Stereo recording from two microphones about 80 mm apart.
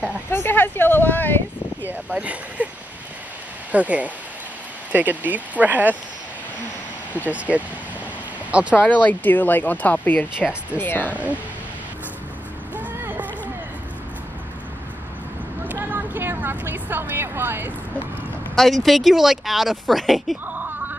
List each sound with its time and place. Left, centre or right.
0.3 s speech: left
1.8 s speech: right
3.7 s speech: centre
7.2 s speech: centre
8.8 s speech: left
13.0 s a sound: right
15.7 s a woman's voice: right
18.5 s speech: centre